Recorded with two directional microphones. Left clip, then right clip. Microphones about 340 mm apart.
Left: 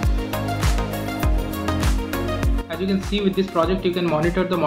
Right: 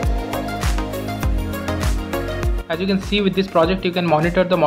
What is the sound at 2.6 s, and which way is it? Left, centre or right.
A man's voice, right.